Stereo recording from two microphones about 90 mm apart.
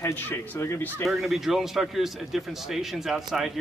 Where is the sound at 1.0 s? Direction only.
Centre (ahead or behind).